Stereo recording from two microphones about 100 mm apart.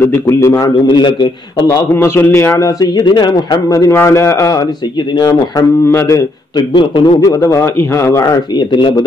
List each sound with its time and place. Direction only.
0.0 s a man's voice: 25° left (ahead or behind)
0.8 s a man's voice: 55° left (ahead or behind)
2.0 s a man's voice: 25° left (ahead or behind)
2.8 s a man's voice: 45° left (ahead or behind)
3.9 s a man's voice: 25° left (ahead or behind)
5.1 s speech: 40° left (ahead or behind)
5.9 s a man's voice: 25° left (ahead or behind)
6.7 s a man's voice: 60° left (ahead or behind)
7.4 s speech: 30° left (ahead or behind)
8.7 s a man's voice: 50° left (ahead or behind)